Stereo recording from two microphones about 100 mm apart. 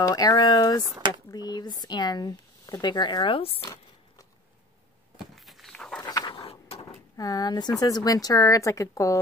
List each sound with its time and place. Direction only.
0.0 s speech: 35° left (ahead or behind)
0.8 s speech: 45° right (ahead or behind)
1.3 s speech: 40° left (ahead or behind)
3.3 s speech: 70° left (ahead or behind)
5.2 s walk: centre (ahead or behind)
6.0 s pant: 40° left (ahead or behind)
6.3 s a sound: 75° left (ahead or behind)
7.2 s speech: 40° left (ahead or behind)